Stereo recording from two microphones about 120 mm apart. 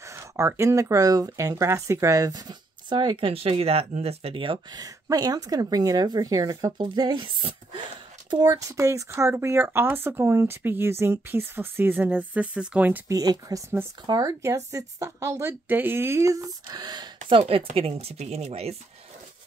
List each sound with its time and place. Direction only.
0.0 s speech: 25° right (ahead or behind); by 4.7 s 45° right (ahead or behind)
4.7 s speech: 30° right (ahead or behind); by 13.0 s 10° right (ahead or behind)
13.1 s speech: 30° right (ahead or behind)
17.3 s speech: 50° right (ahead or behind)